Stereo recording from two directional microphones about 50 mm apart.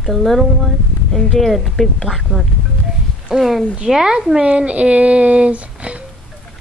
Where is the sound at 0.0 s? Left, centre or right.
Centre; by 6.0 s right.